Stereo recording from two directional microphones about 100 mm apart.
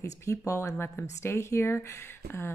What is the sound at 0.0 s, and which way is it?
Speech, 35° left (ahead or behind).